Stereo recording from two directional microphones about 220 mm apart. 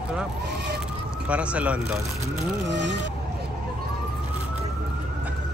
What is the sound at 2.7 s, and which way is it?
Speech, 55° right (ahead or behind).